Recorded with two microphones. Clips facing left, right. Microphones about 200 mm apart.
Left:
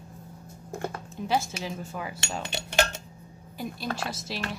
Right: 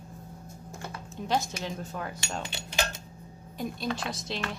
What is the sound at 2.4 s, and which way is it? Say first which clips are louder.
Dishes: left 8 dB; 65° left (ahead or behind).